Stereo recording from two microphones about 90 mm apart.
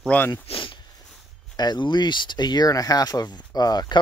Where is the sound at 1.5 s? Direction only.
50° left (ahead or behind).